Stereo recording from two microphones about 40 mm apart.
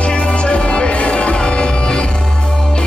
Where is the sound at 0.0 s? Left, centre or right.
Left.